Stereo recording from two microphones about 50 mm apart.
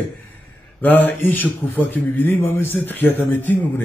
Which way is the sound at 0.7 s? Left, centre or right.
Left.